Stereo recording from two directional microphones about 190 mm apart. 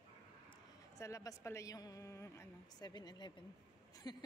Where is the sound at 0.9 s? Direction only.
15° left (ahead or behind).